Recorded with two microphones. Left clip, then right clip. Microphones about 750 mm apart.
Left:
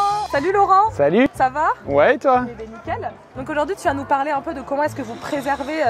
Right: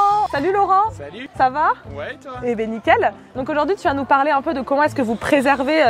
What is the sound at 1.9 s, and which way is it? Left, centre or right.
Speech, left.